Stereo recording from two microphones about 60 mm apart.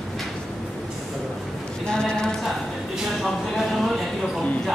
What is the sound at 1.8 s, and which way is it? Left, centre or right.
Clip-clop, centre.